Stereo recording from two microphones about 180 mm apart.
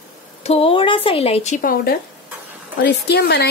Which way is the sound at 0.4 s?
35° left (ahead or behind).